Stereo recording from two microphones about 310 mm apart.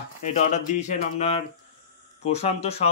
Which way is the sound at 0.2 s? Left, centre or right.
Left.